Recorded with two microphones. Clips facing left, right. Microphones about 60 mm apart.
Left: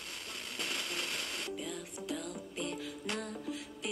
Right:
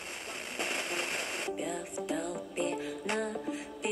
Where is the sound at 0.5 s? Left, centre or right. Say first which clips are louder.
Right 4 dB; right.